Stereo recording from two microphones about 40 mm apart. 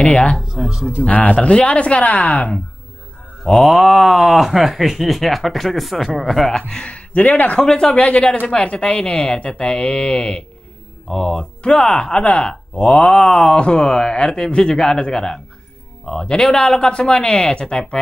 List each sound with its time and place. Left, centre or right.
0.0 s speech: left
0.5 s speech: centre
1.0 s speech: left
3.6 s speech: centre
6.8 s speech: left
7.6 s speech: left
7.9 s speech: left
11.1 s mantra: centre
11.6 s speech: left
12.4 s speech: left
13.0 s mantra: centre
13.5 s speech: left
16.1 s mantra: centre
16.4 s speech: left